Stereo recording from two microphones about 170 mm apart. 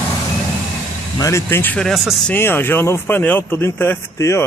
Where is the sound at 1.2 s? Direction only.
15° left (ahead or behind); by 2.2 s centre (ahead or behind).